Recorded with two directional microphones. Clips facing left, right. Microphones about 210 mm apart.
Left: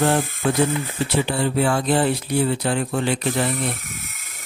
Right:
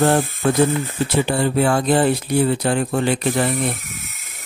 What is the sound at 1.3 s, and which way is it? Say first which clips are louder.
Speech: right 4 dB; 50° right (ahead or behind).